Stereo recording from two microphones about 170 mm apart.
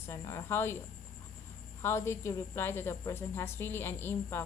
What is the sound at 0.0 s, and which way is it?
Speech, 15° left (ahead or behind).